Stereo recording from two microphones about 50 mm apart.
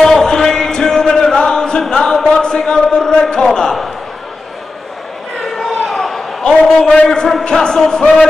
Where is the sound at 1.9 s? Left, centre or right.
Centre.